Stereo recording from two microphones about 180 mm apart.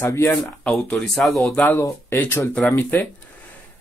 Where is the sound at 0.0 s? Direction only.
10° left (ahead or behind).